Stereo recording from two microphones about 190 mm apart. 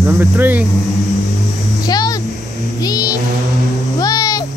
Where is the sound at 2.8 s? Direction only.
20° left (ahead or behind).